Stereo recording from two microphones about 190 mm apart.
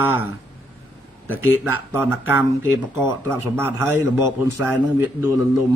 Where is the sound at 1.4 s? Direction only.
10° right (ahead or behind).